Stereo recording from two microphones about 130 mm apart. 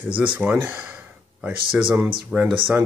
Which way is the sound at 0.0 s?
10° right (ahead or behind).